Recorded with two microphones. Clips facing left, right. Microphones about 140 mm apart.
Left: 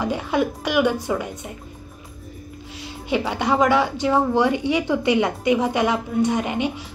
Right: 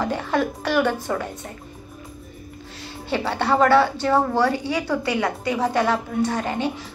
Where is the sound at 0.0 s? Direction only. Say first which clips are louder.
Left 1 dB; 10° left (ahead or behind).